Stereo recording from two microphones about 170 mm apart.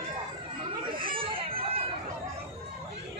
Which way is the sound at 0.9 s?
30° right (ahead or behind).